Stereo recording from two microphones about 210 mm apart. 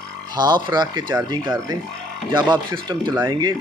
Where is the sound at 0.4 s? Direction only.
20° right (ahead or behind).